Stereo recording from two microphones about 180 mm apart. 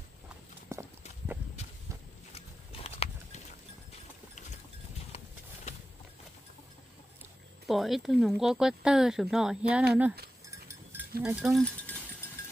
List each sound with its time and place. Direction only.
0.7 s clip-clop: 15° right (ahead or behind)
2.3 s a sound: 35° left (ahead or behind)
7.6 s speech: centre (ahead or behind)
10.5 s livestock: 15° right (ahead or behind)
11.3 s speech: centre (ahead or behind)